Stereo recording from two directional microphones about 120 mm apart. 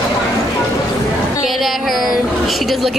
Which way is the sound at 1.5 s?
Centre (ahead or behind).